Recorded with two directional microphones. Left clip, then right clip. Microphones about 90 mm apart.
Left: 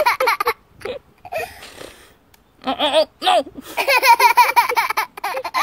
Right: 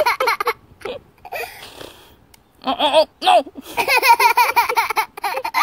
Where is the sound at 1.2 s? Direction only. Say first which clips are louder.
Left 3 dB; 5° left (ahead or behind).